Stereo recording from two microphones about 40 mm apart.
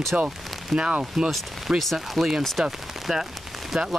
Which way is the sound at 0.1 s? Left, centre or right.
Right.